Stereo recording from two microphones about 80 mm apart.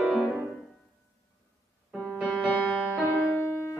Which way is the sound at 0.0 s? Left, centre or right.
Centre.